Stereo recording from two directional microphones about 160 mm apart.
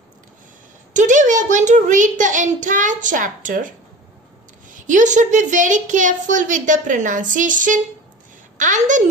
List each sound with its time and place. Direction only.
0.9 s a child's voice: 50° right (ahead or behind)